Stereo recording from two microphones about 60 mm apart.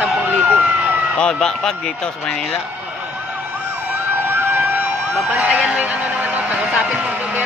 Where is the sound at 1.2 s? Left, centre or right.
Centre.